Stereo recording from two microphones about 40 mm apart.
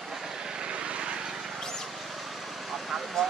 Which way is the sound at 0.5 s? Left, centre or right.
Right.